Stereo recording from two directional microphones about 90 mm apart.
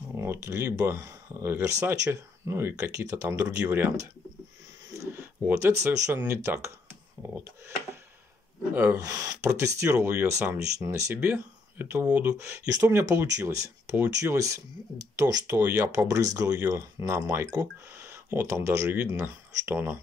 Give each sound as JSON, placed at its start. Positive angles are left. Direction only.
{"t": 0.1, "sound": "speech", "side_deg": -30}
{"t": 3.6, "sound": "speech", "side_deg": -20}
{"t": 4.9, "sound": "a sound", "side_deg": -35}
{"t": 6.1, "sound": "speech", "side_deg": -25}
{"t": 8.7, "sound": "speech", "side_deg": -25}
{"t": 9.0, "sound": "speech", "side_deg": -40}
{"t": 11.1, "sound": "speech", "side_deg": -15}
{"t": 13.1, "sound": "speech", "side_deg": -35}